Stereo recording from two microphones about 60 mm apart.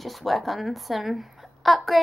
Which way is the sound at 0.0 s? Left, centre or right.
Centre.